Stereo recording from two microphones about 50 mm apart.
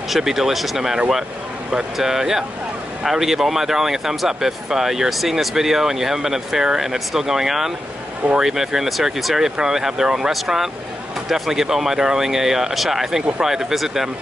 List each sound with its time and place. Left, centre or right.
0.1 s speech: centre